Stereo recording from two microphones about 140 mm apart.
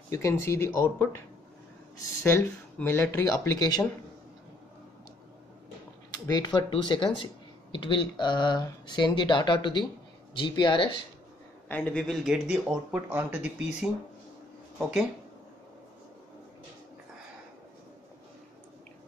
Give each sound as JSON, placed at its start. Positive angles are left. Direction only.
{"t": 0.1, "sound": "speech", "side_deg": 20}
{"t": 2.2, "sound": "speech", "side_deg": 20}
{"t": 6.2, "sound": "speech", "side_deg": 30}
{"t": 11.7, "sound": "speech", "side_deg": 10}
{"t": 14.8, "sound": "speech", "side_deg": -5}